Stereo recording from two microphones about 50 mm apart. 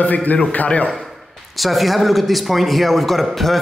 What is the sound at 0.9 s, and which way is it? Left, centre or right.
Speech, centre.